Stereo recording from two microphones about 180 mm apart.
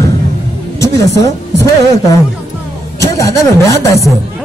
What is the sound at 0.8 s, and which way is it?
A man's voice, 20° left (ahead or behind).